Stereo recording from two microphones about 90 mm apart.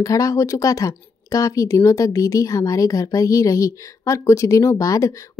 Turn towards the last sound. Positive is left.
turn(degrees=35)  # may be behind; listen again after turning